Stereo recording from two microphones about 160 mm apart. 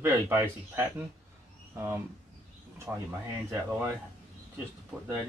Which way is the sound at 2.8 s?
15° right (ahead or behind).